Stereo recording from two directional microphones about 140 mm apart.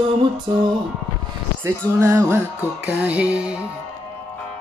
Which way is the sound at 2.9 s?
10° right (ahead or behind).